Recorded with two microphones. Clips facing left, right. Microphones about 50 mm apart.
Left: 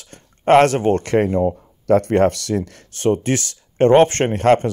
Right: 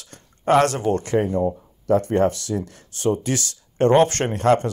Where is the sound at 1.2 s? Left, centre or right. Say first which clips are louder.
Left 4 dB; left.